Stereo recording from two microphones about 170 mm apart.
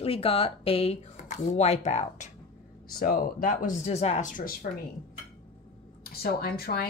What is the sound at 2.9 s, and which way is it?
Speech, 60° left (ahead or behind).